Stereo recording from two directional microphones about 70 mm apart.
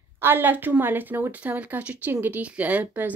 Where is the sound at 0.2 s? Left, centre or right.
Right.